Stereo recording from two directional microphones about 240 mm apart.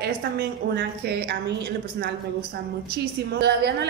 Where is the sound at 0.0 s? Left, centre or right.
Right.